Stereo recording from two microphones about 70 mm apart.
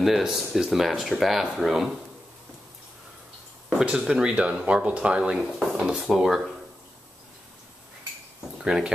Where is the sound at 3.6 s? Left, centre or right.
Centre.